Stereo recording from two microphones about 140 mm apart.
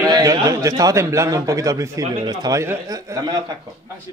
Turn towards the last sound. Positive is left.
turn(degrees=-30)  # may be behind; listen again after turning